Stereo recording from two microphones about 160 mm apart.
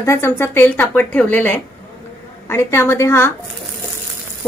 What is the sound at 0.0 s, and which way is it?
A woman's voice, 15° left (ahead or behind).